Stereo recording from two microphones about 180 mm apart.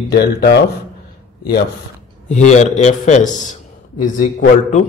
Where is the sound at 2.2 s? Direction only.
40° left (ahead or behind).